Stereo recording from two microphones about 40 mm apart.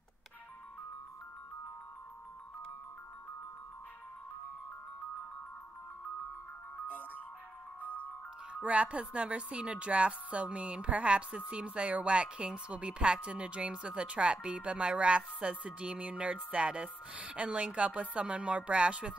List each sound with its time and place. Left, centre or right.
7.8 s music: left
8.6 s a woman's voice: right